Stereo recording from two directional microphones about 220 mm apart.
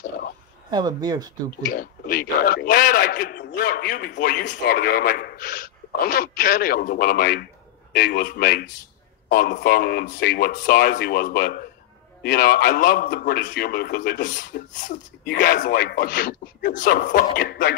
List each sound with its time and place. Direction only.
0.7 s speech: 20° right (ahead or behind)
1.7 s a man's voice: 40° left (ahead or behind)